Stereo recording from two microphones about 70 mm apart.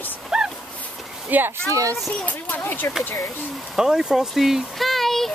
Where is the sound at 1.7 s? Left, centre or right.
Right.